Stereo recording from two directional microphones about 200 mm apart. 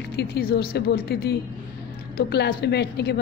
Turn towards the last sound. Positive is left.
turn(degrees=55)  # may be behind; listen again after turning